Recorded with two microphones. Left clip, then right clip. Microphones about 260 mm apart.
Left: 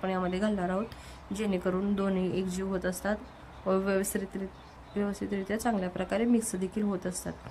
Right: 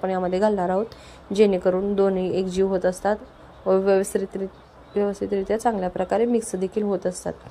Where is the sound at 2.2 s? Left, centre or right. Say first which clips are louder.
Right 8 dB; left.